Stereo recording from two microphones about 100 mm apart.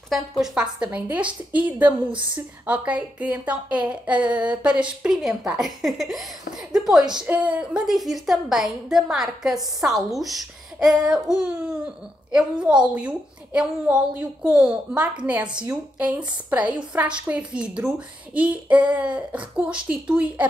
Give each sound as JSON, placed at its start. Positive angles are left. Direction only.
{"t": 0.4, "sound": "a woman's voice", "side_deg": -10}
{"t": 7.2, "sound": "a woman's voice", "side_deg": -15}
{"t": 12.4, "sound": "speech", "side_deg": -5}